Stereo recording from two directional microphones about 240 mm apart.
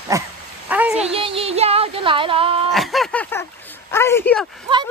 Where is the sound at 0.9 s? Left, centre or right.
Right.